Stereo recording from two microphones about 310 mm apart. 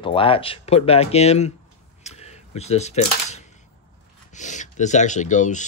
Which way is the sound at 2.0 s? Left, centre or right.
Left.